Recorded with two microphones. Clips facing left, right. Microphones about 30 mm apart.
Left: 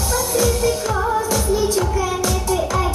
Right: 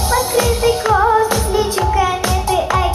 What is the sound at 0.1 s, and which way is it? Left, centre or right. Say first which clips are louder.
Music: right 3 dB; right.